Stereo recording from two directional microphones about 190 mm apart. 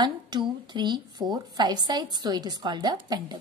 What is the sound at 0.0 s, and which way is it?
A woman's voice, 25° right (ahead or behind).